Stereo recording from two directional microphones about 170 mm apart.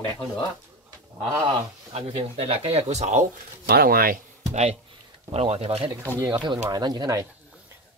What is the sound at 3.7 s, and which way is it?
Speech, 65° right (ahead or behind).